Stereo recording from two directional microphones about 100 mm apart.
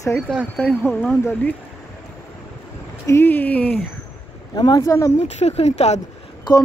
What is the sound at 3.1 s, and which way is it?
Speech, 20° left (ahead or behind).